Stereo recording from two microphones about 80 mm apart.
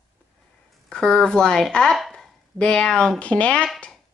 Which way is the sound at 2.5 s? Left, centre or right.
Centre.